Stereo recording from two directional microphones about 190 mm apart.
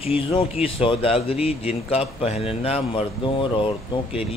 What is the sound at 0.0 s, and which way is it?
A man's voice, 30° left (ahead or behind).